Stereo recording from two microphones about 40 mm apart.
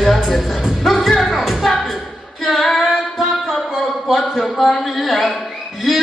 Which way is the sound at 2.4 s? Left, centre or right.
Centre.